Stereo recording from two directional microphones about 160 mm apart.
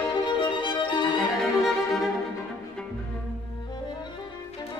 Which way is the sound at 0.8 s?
30° left (ahead or behind).